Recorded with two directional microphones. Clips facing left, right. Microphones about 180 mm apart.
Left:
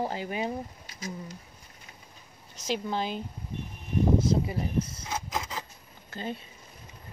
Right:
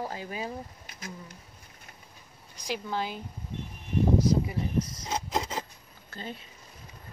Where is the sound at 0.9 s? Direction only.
55° right (ahead or behind).